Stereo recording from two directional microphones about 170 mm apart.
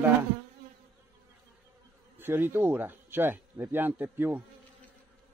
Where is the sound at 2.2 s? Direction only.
10° right (ahead or behind).